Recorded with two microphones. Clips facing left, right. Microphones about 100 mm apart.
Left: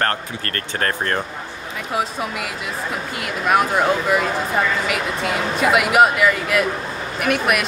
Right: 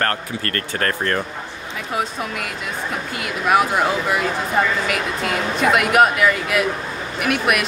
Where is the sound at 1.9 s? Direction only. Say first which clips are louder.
Left 1 dB; centre (ahead or behind).